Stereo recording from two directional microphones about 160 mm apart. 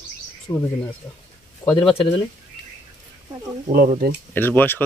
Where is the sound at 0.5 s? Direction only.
30° left (ahead or behind).